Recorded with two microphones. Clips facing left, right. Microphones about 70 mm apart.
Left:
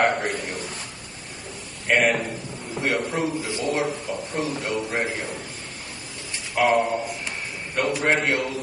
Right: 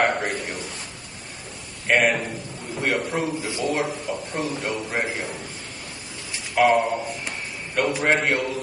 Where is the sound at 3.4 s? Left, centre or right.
Right.